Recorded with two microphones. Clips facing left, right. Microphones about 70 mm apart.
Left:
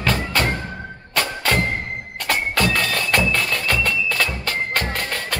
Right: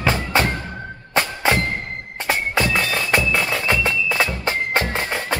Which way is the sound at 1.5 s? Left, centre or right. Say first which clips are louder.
Right 2 dB; centre.